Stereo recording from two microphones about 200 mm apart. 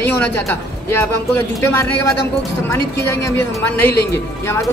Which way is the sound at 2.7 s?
15° left (ahead or behind).